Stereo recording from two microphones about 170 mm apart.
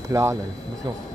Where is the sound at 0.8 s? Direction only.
25° right (ahead or behind).